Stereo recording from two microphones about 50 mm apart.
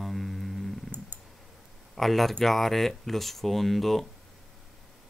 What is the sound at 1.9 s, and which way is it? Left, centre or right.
Speech, centre.